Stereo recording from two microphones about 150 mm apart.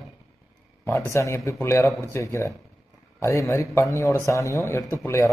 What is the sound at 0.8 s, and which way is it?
A man's voice, 20° left (ahead or behind).